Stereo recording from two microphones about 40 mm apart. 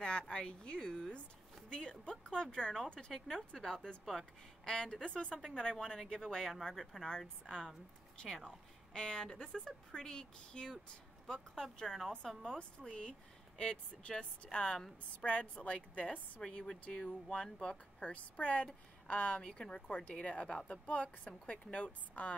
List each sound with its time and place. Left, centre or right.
0.0 s a sound: centre
0.7 s a woman's voice: left; by 4.3 s centre
4.6 s a woman's voice: centre; by 16.2 s left
16.4 s speech: centre
16.9 s a woman's voice: left
18.1 s a woman's voice: left
19.4 s a woman's voice: left